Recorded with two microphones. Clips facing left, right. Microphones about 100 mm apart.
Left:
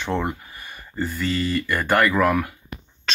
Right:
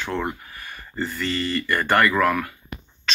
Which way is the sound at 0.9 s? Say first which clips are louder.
Left 2 dB; 5° left (ahead or behind).